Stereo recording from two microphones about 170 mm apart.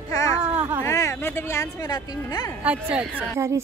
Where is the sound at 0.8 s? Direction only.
15° left (ahead or behind).